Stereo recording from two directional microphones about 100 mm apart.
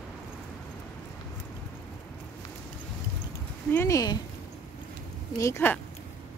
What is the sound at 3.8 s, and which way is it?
Speech, 40° left (ahead or behind).